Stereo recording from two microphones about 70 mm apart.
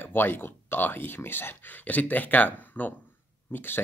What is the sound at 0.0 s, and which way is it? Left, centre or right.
Speech, left.